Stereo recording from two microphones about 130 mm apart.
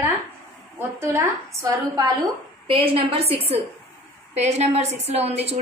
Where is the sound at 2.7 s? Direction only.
45° right (ahead or behind).